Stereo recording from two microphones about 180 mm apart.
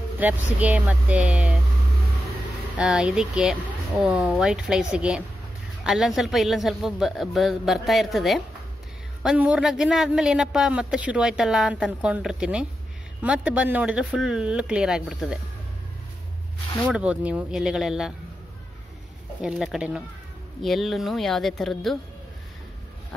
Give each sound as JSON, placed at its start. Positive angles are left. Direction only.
{"t": 0.2, "sound": "speech", "side_deg": -10}
{"t": 2.8, "sound": "a man's voice", "side_deg": -5}
{"t": 16.9, "sound": "a man's voice", "side_deg": -5}
{"t": 19.4, "sound": "a man's voice", "side_deg": -5}